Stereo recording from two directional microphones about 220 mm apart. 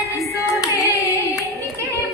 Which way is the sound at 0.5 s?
15° left (ahead or behind).